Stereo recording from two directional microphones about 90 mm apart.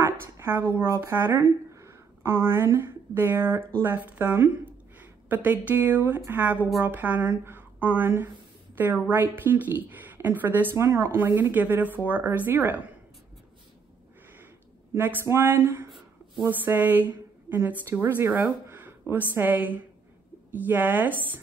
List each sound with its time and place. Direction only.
0.0 s a sound: 25° right (ahead or behind)
1.1 s a woman's voice: 25° right (ahead or behind)
1.4 s a woman's voice: 35° right (ahead or behind)
15.0 s a woman's voice: 25° right (ahead or behind)